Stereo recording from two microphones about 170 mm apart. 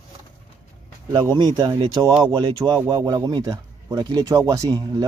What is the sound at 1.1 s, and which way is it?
Speech, 25° right (ahead or behind).